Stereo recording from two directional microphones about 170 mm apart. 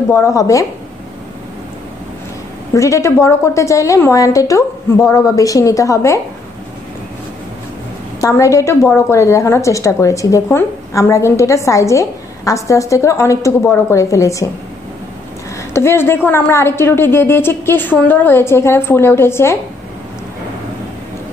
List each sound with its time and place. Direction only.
0.1 s a woman's voice: 20° left (ahead or behind)
2.7 s a woman's voice: 15° left (ahead or behind)
8.2 s a woman's voice: 20° left (ahead or behind)
15.7 s a woman's voice: 15° left (ahead or behind)